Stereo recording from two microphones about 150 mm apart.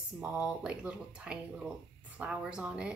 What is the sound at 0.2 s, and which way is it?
A woman's voice, 5° right (ahead or behind).